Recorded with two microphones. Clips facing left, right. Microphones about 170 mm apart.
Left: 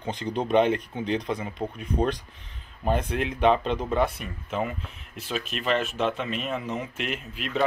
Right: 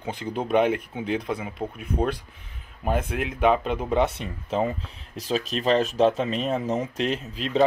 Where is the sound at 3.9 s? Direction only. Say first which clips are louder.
Right 2 dB; 25° right (ahead or behind).